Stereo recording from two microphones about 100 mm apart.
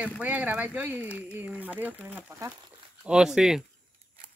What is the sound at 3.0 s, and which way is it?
Speech, 5° right (ahead or behind).